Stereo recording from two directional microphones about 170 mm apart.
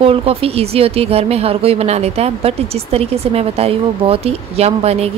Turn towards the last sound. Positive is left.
turn(degrees=-35)  # may be behind; listen again after turning